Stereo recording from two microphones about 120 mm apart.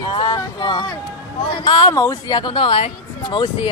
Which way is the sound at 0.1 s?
40° left (ahead or behind).